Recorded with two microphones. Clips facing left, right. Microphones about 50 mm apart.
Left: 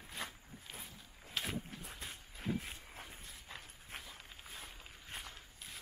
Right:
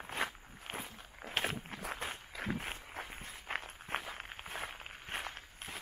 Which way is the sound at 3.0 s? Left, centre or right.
Right.